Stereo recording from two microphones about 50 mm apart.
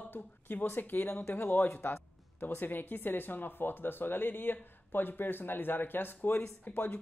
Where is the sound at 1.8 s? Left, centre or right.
Left.